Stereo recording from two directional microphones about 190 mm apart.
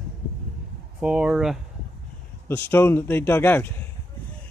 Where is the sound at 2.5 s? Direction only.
10° left (ahead or behind).